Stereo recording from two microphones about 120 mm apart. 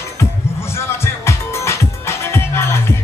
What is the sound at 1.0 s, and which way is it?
Music, 20° left (ahead or behind).